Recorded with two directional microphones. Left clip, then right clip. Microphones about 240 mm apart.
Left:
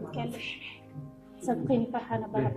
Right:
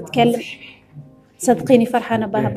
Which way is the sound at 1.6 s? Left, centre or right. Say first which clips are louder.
Right 14 dB; right.